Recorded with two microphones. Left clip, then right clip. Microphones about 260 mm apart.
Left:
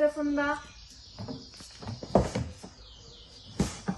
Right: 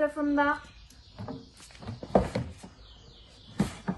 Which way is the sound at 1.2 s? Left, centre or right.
Centre.